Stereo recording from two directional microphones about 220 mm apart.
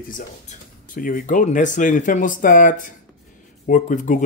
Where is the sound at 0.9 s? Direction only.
40° left (ahead or behind).